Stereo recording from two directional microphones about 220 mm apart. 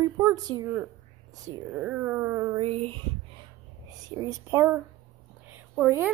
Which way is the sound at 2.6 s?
25° right (ahead or behind).